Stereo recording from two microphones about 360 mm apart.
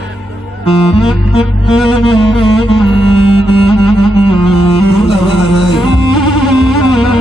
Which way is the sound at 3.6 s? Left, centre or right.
Centre.